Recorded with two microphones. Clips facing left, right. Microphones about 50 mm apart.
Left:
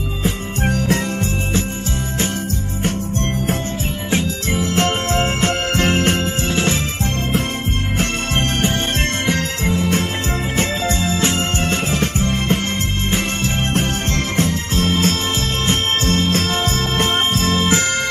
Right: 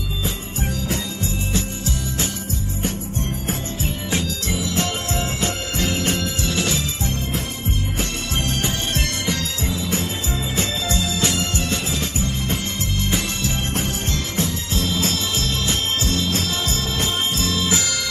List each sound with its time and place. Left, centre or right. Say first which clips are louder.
0.2 s jingle bell: left 8 dB; left
4.1 s jingle bell: left 6 dB; left
9.2 s music: left 5 dB; left
10.5 s music: left 4 dB; left